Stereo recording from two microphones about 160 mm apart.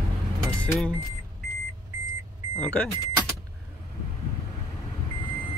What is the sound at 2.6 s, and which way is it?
Speech, 5° left (ahead or behind).